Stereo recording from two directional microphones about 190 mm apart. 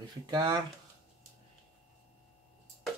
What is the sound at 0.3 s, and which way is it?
Speech, 20° right (ahead or behind).